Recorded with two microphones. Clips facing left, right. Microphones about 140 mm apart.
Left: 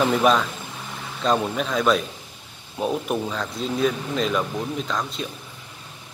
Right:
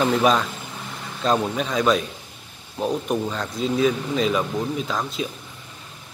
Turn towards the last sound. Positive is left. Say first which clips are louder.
# right 1 dB
turn(degrees=-5)  # may be behind; listen again after turning